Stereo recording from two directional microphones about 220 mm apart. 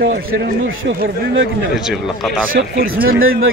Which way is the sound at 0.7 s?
55° right (ahead or behind).